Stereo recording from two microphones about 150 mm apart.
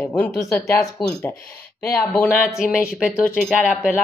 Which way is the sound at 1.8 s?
10° left (ahead or behind).